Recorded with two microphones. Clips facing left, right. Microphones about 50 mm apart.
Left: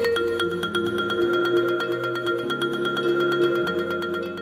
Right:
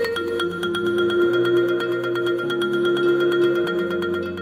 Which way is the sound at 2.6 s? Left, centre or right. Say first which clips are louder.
Right 5 dB; centre.